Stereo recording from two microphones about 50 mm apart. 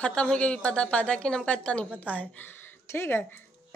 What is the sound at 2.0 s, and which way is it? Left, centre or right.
Speech, left.